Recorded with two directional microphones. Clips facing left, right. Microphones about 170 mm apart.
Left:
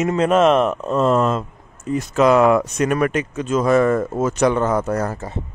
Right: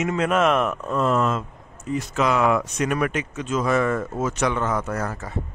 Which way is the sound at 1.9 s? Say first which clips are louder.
Left 7 dB; 45° left (ahead or behind).